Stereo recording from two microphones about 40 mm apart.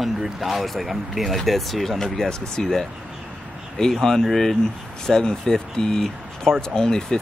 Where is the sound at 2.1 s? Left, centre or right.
Centre.